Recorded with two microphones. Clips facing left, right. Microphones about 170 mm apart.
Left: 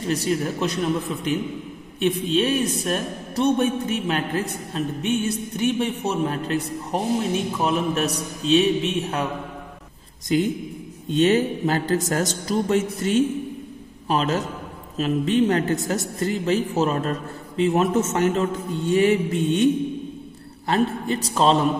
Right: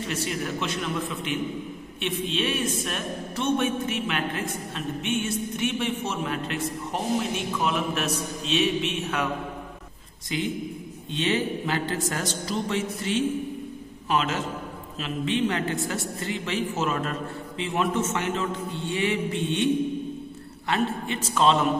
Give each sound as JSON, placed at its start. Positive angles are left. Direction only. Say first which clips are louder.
{"t": 0.0, "sound": "a man's voice", "louder": "left 6 dB", "side_deg": 35}
{"t": 10.3, "sound": "a woman's voice", "louder": "left 7 dB", "side_deg": 45}